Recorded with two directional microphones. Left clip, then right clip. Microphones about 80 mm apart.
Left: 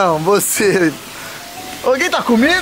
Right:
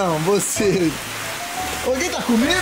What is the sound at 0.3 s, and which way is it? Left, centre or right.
Speech, left.